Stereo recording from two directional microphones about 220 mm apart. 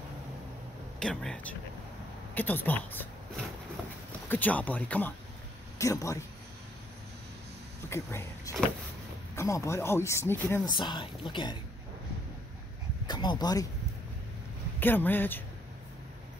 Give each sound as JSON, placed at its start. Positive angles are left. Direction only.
{"t": 0.9, "sound": "speech", "side_deg": 5}
{"t": 4.3, "sound": "speech", "side_deg": 5}
{"t": 7.9, "sound": "speech", "side_deg": 10}
{"t": 10.8, "sound": "speech", "side_deg": 20}
{"t": 13.0, "sound": "speech", "side_deg": 20}
{"t": 14.8, "sound": "speech", "side_deg": 10}